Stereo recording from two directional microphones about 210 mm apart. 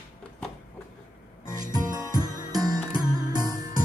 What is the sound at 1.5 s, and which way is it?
Music, 20° right (ahead or behind).